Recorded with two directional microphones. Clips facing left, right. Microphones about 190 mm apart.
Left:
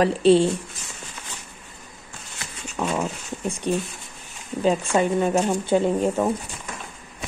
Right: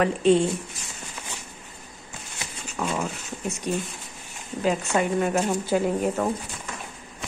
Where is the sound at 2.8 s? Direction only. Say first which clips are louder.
Left 3 dB; 25° left (ahead or behind).